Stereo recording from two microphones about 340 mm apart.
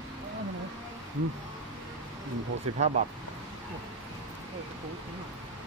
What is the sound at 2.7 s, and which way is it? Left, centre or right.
Speech, right.